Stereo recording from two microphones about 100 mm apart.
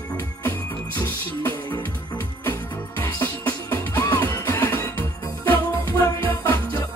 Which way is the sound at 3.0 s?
20° left (ahead or behind).